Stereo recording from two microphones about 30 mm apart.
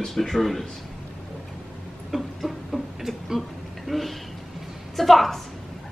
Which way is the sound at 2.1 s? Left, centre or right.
Centre.